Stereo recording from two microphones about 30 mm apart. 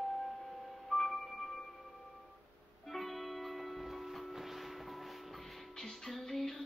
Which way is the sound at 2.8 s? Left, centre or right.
Centre.